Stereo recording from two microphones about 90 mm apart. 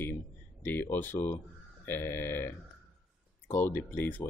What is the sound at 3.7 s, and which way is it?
Speech, 20° left (ahead or behind).